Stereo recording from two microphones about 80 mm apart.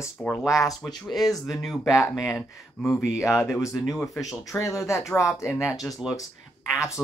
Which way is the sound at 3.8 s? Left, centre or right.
Centre.